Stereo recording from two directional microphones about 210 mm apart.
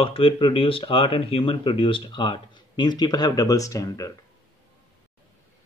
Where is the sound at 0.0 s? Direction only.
25° left (ahead or behind).